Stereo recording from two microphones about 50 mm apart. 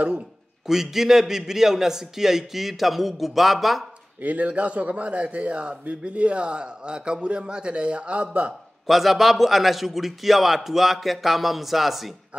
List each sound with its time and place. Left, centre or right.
0.7 s a man's voice: centre
4.2 s a man's voice: right
8.8 s a man's voice: centre